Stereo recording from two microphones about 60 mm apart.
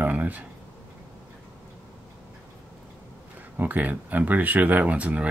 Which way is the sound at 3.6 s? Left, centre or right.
Right.